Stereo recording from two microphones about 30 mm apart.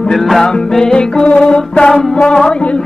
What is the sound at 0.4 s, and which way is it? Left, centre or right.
Music, left.